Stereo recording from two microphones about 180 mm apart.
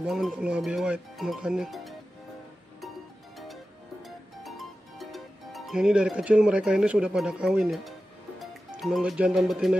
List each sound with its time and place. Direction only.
0.0 s speech: centre (ahead or behind)
4.0 s music: centre (ahead or behind)
8.4 s speech: centre (ahead or behind)